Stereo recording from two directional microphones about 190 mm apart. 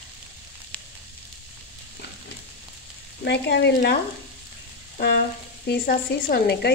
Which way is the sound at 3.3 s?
65° left (ahead or behind).